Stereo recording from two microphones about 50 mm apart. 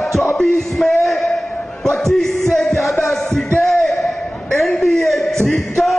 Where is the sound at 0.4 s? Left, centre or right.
Centre.